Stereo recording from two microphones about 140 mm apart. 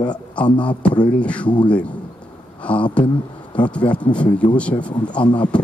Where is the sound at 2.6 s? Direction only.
10° left (ahead or behind).